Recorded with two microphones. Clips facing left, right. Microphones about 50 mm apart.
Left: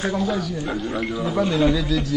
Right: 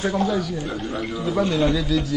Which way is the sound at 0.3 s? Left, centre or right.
Centre.